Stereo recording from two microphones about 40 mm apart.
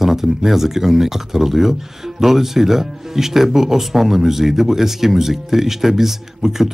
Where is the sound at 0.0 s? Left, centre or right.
Centre.